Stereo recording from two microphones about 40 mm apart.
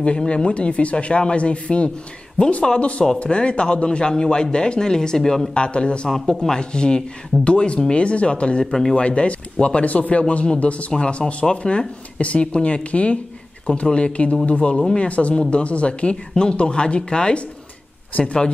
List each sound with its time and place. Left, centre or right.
0.2 s speech: left
5.5 s speech: left